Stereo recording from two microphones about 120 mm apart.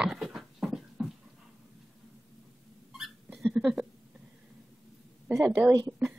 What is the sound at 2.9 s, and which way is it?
Hiccup, centre (ahead or behind).